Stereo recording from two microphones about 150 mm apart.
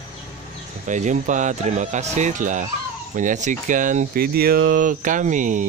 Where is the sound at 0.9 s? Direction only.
55° right (ahead or behind).